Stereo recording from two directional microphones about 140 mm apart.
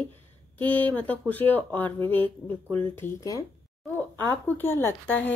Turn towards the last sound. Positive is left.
turn(degrees=10)  # may be behind; listen again after turning